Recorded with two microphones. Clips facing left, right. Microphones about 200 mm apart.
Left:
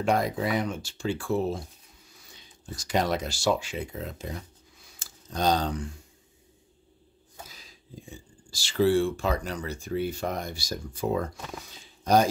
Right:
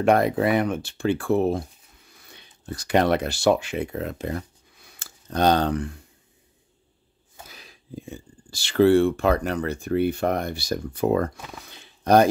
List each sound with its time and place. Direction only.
0.0 s speech: 60° right (ahead or behind)
7.4 s speech: 60° right (ahead or behind)
11.7 s a sound: 65° right (ahead or behind)